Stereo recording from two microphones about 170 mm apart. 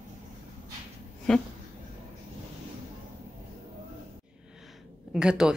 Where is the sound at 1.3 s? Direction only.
5° left (ahead or behind).